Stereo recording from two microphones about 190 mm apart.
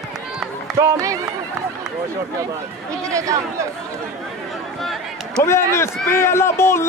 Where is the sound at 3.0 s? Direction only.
15° right (ahead or behind).